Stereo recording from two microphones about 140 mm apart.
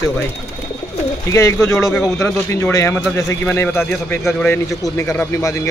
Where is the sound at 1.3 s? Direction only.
20° left (ahead or behind).